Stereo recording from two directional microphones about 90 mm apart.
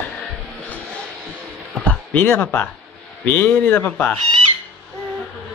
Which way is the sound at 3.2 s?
20° left (ahead or behind).